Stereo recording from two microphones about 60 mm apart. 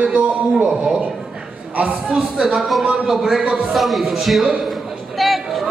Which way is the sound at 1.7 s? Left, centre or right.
Right.